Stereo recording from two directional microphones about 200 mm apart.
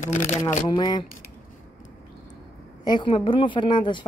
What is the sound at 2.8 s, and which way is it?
A woman's voice, 20° left (ahead or behind).